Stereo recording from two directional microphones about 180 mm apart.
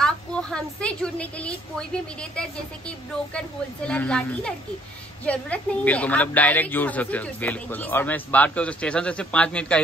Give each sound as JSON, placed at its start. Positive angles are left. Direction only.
{"t": 0.0, "sound": "a woman's voice", "side_deg": 5}
{"t": 3.3, "sound": "a woman's voice", "side_deg": 5}